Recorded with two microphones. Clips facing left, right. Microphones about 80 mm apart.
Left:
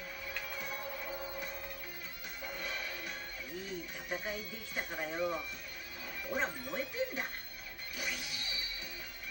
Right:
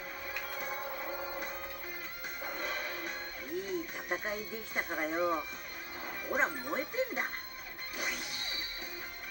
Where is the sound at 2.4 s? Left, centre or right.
Right.